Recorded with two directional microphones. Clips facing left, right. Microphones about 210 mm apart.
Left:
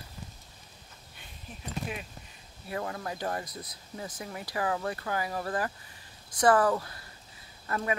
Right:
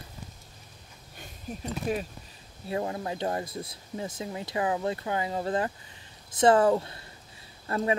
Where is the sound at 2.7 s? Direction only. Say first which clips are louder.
Right 4 dB; 25° right (ahead or behind).